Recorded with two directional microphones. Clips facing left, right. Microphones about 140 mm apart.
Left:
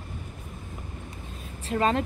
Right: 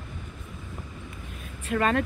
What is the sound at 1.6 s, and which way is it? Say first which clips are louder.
Speech: even; 25° left (ahead or behind).